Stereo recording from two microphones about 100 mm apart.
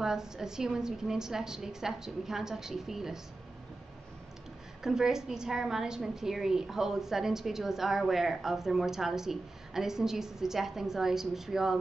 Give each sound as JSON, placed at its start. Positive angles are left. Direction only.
{"t": 0.0, "sound": "a woman's voice", "side_deg": -5}
{"t": 4.8, "sound": "a woman's voice", "side_deg": -5}